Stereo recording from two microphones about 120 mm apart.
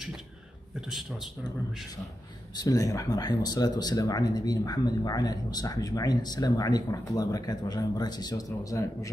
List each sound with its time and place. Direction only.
0.7 s a man's voice: 5° right (ahead or behind)
2.5 s speech: 30° left (ahead or behind)